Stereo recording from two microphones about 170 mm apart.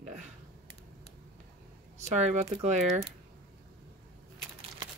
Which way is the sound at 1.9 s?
40° right (ahead or behind).